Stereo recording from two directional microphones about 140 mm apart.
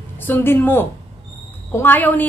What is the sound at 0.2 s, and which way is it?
A woman's voice, 15° left (ahead or behind).